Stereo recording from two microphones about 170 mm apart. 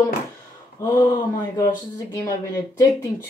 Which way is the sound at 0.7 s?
20° left (ahead or behind).